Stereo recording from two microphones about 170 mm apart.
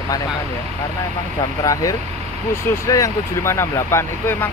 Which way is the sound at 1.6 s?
20° left (ahead or behind).